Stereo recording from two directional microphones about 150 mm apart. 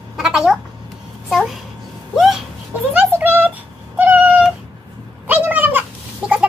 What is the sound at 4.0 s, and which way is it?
Cat, 10° right (ahead or behind).